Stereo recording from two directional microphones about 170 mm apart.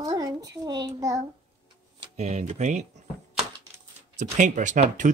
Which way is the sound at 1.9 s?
40° right (ahead or behind).